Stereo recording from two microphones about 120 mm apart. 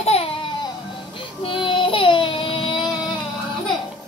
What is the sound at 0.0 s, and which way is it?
Music, 55° left (ahead or behind).